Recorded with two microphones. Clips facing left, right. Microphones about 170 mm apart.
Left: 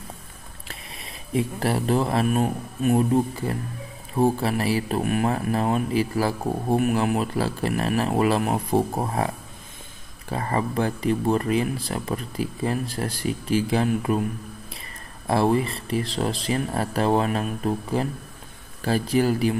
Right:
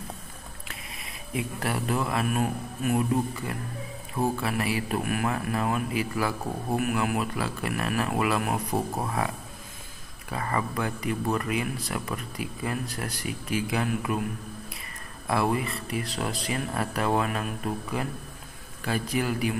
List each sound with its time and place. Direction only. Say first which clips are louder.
1.3 s speech: left 6 dB; 30° left (ahead or behind)
10.3 s speech: left 4 dB; 30° left (ahead or behind)
15.2 s speech: left 5 dB; 30° left (ahead or behind)